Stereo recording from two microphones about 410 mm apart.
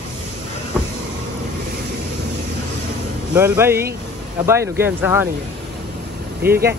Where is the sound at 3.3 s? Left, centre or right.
Centre.